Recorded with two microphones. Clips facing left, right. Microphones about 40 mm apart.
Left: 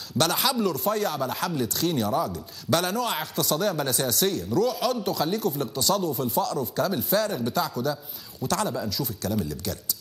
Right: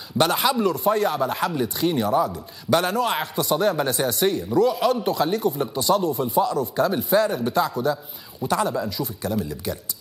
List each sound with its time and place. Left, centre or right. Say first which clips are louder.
0.2 s speech: right 4 dB; centre